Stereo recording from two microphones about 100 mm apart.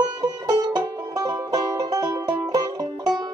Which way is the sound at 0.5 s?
40° right (ahead or behind).